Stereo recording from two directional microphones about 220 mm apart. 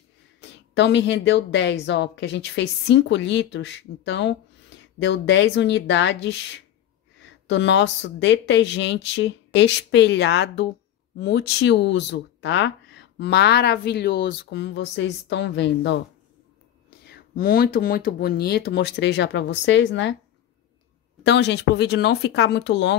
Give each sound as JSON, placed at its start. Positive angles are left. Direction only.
{"t": 0.4, "sound": "speech", "side_deg": 55}
{"t": 17.0, "sound": "speech", "side_deg": 45}
{"t": 21.2, "sound": "speech", "side_deg": 50}